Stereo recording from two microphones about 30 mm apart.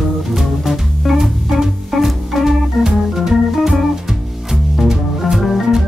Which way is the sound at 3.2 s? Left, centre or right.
Centre.